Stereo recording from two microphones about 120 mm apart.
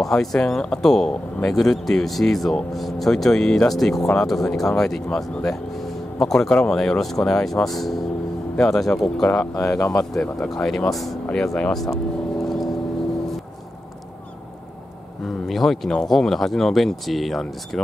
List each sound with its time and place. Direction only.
0.0 s speech: 5° left (ahead or behind)
9.6 s speech: 25° left (ahead or behind)
10.1 s speech: 5° left (ahead or behind)
12.4 s vehicle: centre (ahead or behind)
15.2 s speech: centre (ahead or behind)